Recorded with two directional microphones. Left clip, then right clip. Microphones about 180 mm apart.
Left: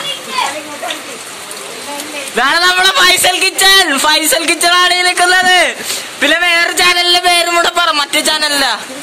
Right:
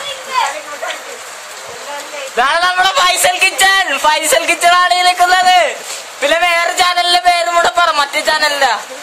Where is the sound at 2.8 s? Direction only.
5° left (ahead or behind).